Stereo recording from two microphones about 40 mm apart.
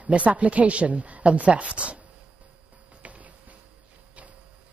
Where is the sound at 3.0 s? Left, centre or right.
Right.